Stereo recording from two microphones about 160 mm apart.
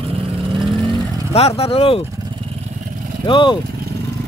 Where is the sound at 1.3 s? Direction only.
40° left (ahead or behind).